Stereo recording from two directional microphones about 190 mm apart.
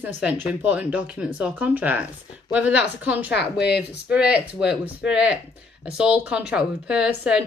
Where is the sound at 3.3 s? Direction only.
60° left (ahead or behind).